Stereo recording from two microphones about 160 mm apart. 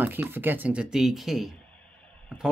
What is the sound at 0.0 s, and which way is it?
Speech, 10° right (ahead or behind).